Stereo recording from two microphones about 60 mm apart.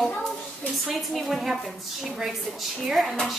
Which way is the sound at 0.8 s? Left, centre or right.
Centre.